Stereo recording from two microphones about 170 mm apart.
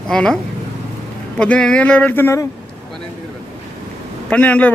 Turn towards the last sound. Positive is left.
turn(degrees=10)  # may be behind; listen again after turning